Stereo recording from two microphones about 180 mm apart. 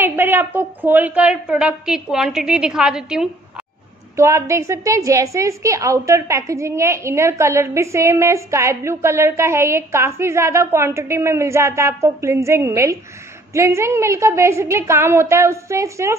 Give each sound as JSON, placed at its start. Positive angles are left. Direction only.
{"t": 0.0, "sound": "a woman's voice", "side_deg": -10}
{"t": 4.2, "sound": "a woman's voice", "side_deg": -15}